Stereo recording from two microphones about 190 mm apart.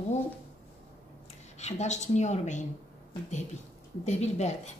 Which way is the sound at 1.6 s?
35° left (ahead or behind).